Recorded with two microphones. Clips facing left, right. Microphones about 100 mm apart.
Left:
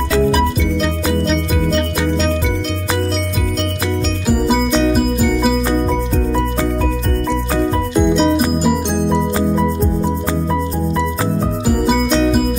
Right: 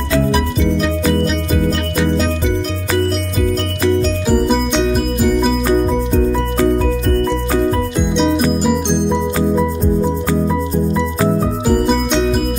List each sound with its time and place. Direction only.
8.1 s music: 5° left (ahead or behind)